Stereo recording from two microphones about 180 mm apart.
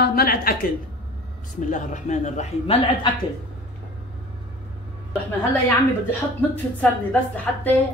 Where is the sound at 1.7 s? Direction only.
45° left (ahead or behind).